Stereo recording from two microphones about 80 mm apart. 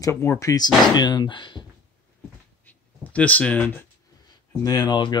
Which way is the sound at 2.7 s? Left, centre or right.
Centre.